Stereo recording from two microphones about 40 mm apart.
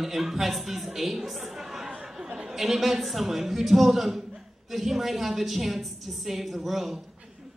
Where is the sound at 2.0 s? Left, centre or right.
Centre.